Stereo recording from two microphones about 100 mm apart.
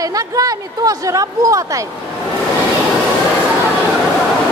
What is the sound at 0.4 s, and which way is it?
Speech, 35° right (ahead or behind).